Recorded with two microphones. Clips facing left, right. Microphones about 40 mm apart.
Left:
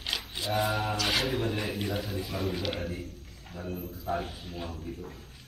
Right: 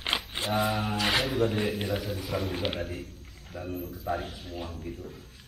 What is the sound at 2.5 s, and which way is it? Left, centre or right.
Speech, right.